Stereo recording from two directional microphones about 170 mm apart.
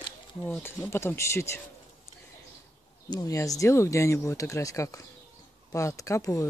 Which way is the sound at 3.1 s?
20° left (ahead or behind).